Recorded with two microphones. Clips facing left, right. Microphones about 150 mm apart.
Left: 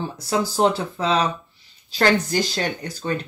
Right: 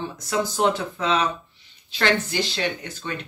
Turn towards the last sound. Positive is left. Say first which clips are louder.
# left 3 dB
turn(degrees=40)  # may be behind; listen again after turning